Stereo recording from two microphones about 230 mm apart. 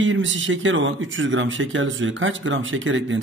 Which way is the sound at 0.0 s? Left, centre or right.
Right.